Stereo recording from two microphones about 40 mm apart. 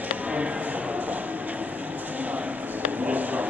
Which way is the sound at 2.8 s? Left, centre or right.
Right.